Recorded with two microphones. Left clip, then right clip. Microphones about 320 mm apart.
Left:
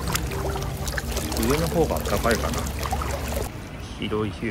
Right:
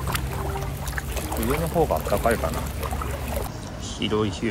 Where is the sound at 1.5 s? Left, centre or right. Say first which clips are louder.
Right 1 dB; centre.